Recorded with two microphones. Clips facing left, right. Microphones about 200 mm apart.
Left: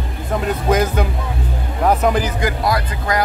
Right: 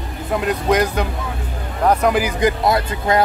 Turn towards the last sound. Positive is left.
turn(degrees=-25)  # may be behind; listen again after turning